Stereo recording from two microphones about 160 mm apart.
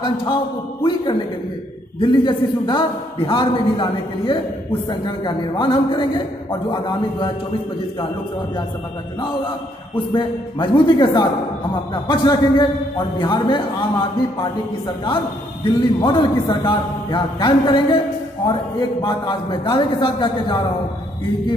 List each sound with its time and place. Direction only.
2.0 s a man's voice: 30° left (ahead or behind)
10.1 s a man's voice: 30° left (ahead or behind)
15.6 s a man's voice: 30° left (ahead or behind)